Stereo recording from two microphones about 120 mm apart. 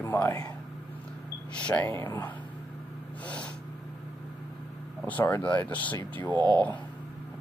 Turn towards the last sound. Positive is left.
turn(degrees=-35)  # may be behind; listen again after turning